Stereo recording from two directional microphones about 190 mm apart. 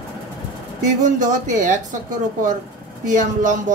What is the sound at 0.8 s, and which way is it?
Speech, 40° right (ahead or behind).